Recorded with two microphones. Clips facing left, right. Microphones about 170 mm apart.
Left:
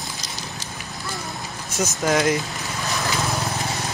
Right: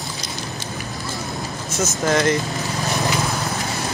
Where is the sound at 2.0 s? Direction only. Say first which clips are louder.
Right 1 dB; centre (ahead or behind).